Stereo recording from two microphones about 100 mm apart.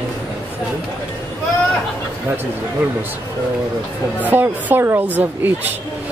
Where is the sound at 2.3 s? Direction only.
25° right (ahead or behind).